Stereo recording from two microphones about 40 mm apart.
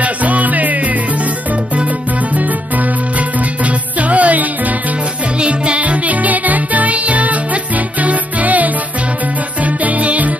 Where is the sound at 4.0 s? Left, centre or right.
Right.